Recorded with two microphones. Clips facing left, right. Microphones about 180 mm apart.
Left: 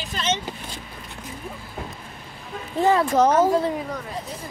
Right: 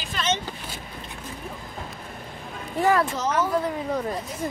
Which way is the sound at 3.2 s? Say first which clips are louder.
Left 10 dB; 60° left (ahead or behind).